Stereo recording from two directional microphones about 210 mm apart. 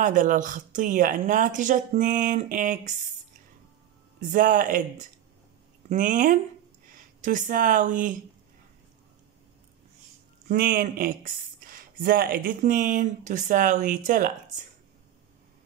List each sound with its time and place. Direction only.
0.0 s speech: 40° right (ahead or behind)
4.3 s speech: 40° right (ahead or behind)
10.5 s speech: 40° right (ahead or behind)